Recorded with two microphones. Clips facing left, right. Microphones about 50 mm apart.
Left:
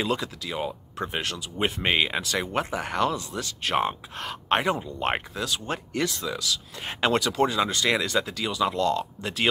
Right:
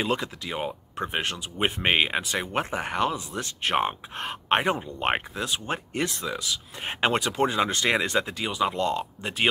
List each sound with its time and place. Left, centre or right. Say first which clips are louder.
0.0 s speech: even; right